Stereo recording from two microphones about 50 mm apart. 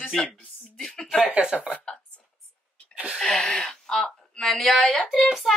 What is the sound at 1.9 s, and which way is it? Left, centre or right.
Speech, left.